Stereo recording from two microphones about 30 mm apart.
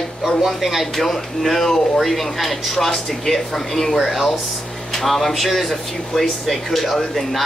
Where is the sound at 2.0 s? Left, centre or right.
Centre.